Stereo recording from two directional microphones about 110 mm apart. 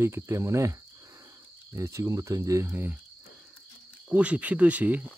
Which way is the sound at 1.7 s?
25° right (ahead or behind).